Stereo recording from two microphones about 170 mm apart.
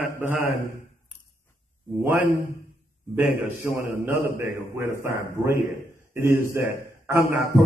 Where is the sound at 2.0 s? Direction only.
15° right (ahead or behind).